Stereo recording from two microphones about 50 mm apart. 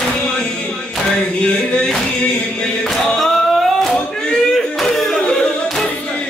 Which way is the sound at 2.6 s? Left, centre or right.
Centre.